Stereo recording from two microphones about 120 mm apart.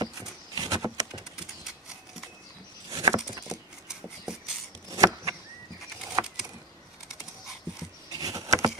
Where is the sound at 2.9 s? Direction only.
30° right (ahead or behind).